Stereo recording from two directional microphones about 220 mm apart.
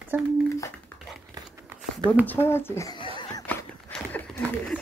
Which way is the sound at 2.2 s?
10° left (ahead or behind).